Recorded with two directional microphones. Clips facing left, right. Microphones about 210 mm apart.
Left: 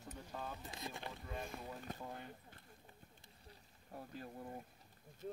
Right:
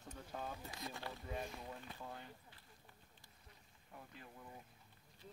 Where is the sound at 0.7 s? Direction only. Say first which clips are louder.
Left 1 dB; 20° left (ahead or behind).